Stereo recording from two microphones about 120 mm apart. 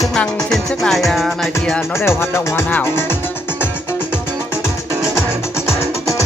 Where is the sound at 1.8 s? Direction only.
20° left (ahead or behind).